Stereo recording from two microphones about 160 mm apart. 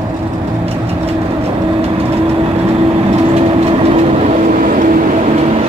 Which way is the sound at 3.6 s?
40° right (ahead or behind).